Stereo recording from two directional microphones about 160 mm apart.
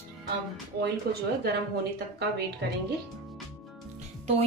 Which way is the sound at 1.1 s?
75° right (ahead or behind).